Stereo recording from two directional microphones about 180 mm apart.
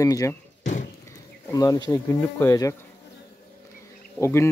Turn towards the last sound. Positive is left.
turn(degrees=15)  # may be behind; listen again after turning